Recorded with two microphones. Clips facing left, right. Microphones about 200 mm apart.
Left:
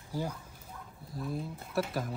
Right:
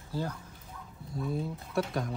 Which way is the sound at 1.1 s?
Centre (ahead or behind).